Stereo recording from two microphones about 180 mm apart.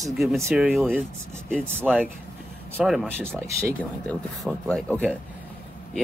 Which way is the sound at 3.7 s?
5° left (ahead or behind).